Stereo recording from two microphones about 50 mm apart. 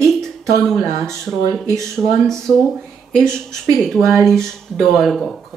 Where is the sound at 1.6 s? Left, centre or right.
Right.